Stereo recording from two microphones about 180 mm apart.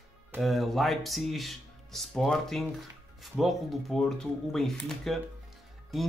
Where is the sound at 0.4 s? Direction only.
Centre (ahead or behind).